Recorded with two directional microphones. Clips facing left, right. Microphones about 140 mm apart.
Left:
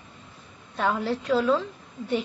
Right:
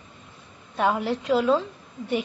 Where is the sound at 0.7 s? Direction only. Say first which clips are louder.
Right 2 dB; 15° right (ahead or behind).